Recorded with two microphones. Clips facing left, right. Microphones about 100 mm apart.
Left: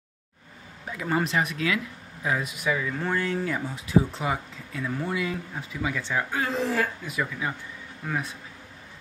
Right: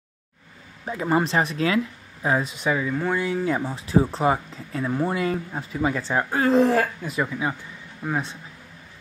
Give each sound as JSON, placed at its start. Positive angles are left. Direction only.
{"t": 0.8, "sound": "speech", "side_deg": -30}
{"t": 2.9, "sound": "speech", "side_deg": -10}
{"t": 3.4, "sound": "speech", "side_deg": -30}